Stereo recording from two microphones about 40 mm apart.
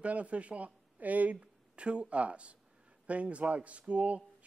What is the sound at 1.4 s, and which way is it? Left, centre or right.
A man's voice, right.